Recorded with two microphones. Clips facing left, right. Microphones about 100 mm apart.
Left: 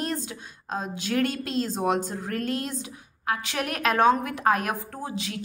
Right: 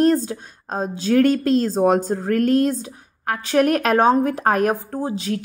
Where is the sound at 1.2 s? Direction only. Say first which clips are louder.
Right 12 dB; 50° right (ahead or behind).